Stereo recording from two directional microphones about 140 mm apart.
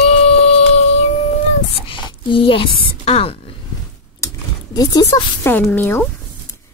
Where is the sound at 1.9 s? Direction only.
35° left (ahead or behind).